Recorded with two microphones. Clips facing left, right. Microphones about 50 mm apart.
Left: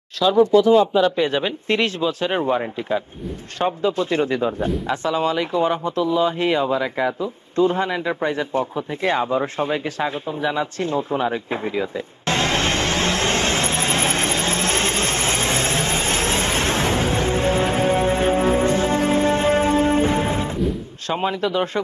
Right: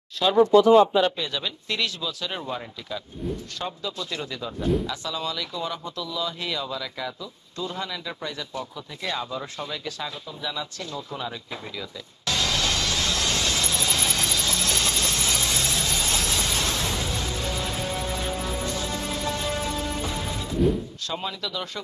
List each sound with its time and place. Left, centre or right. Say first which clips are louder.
1.1 s speech: left 10 dB; left
4.8 s a sound: left 10 dB; left
21.1 s speech: left 11 dB; left